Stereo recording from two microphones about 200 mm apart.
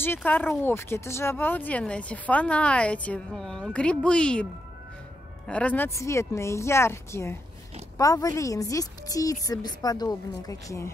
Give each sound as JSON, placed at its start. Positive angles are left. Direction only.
{"t": 0.0, "sound": "speech", "side_deg": 10}
{"t": 5.5, "sound": "speech", "side_deg": 5}